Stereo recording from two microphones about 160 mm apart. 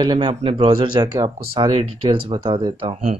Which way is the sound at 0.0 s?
30° right (ahead or behind).